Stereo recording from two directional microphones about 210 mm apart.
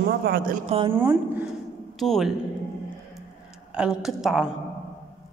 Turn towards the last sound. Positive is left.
turn(degrees=0)  # may be behind; listen again after turning